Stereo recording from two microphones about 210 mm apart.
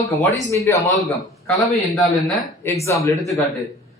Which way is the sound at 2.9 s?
15° left (ahead or behind).